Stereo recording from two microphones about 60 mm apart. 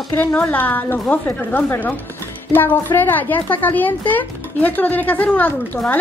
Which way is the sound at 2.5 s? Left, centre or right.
Left.